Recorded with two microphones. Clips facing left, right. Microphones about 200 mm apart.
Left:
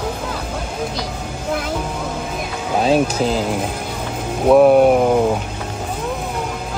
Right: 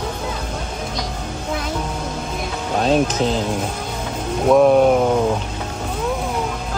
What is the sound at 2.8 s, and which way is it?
Speech, 5° left (ahead or behind).